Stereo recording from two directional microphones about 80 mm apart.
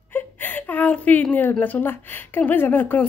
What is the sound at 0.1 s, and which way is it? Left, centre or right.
A woman's voice, left.